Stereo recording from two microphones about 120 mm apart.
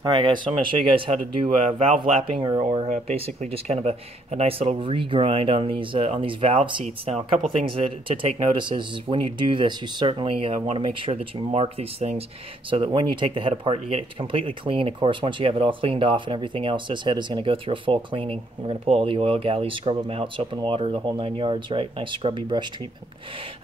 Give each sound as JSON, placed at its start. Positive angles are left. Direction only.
{"t": 0.0, "sound": "speech", "side_deg": -40}
{"t": 2.9, "sound": "speech", "side_deg": -60}
{"t": 7.1, "sound": "speech", "side_deg": -60}
{"t": 7.6, "sound": "speech", "side_deg": -50}
{"t": 12.6, "sound": "speech", "side_deg": -45}